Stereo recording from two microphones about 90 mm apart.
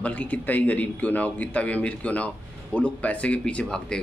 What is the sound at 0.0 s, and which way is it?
A man's voice, 15° left (ahead or behind).